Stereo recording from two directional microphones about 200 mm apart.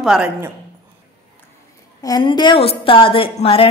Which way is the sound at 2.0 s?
20° left (ahead or behind).